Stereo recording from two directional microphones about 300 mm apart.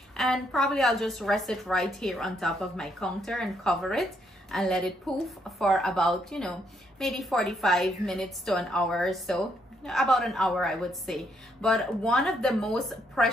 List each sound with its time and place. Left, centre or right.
0.2 s a woman's voice: centre